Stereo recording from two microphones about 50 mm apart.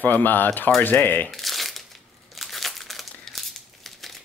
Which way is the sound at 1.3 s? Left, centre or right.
Centre.